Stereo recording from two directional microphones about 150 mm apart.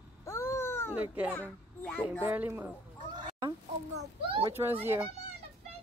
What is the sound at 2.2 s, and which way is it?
Speech, 15° right (ahead or behind).